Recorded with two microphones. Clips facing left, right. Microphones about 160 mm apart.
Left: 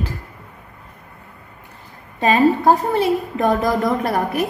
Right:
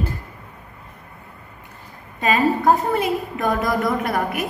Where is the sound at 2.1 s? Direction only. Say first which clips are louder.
Left 4 dB; 30° left (ahead or behind).